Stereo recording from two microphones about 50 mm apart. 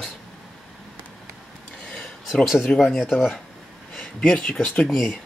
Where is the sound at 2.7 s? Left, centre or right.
Centre.